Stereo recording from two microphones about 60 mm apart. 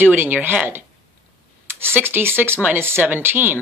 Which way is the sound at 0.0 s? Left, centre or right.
Right.